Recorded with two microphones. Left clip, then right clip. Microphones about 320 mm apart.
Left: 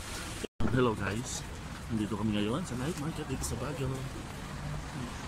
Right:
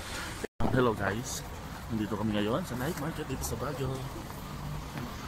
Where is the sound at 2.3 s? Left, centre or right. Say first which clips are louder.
Right 3 dB; centre.